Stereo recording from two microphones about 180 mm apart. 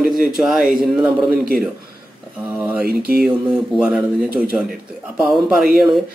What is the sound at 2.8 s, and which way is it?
Mantra, 55° right (ahead or behind).